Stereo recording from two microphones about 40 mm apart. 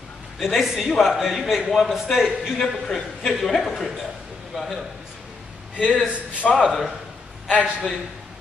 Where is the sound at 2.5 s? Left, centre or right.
Centre.